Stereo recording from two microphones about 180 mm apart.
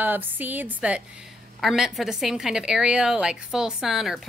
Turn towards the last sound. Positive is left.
turn(degrees=0)  # may be behind; listen again after turning